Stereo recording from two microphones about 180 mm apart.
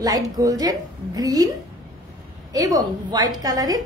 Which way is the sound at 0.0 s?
20° right (ahead or behind).